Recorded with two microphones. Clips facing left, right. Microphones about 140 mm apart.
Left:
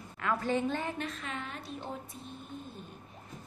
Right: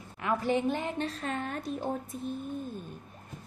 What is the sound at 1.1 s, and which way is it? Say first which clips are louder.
Speech: right 6 dB; 40° right (ahead or behind).